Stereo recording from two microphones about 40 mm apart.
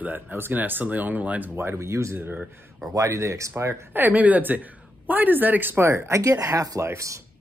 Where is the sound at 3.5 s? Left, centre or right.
Right.